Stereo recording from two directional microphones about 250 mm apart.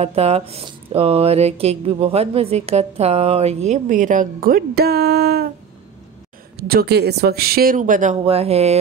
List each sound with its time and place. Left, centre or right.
0.0 s speech: right
6.5 s speech: right